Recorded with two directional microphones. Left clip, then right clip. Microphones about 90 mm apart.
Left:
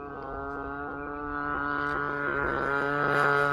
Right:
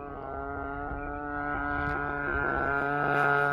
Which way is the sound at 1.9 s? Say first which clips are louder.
Left 1 dB; 35° right (ahead or behind).